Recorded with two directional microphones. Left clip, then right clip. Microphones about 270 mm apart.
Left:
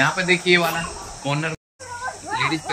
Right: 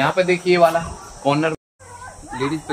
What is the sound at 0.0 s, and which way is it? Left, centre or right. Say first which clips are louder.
Speech: right 1 dB; right.